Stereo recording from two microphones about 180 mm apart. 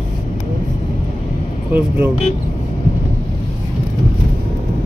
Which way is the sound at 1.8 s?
10° right (ahead or behind).